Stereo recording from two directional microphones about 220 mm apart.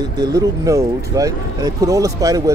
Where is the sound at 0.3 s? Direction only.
15° right (ahead or behind).